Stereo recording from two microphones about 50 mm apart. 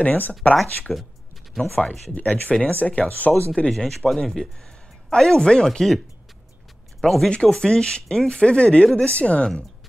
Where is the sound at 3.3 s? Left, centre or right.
Centre.